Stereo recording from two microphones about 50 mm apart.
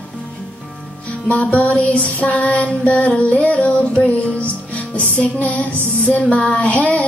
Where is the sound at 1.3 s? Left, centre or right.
Left.